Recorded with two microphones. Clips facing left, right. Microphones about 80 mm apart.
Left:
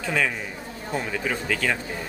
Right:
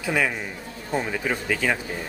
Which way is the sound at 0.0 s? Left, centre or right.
Centre.